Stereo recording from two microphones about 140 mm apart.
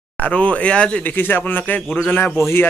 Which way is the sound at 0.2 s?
10° left (ahead or behind).